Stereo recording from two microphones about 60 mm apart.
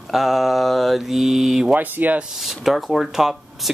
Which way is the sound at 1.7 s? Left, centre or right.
Right.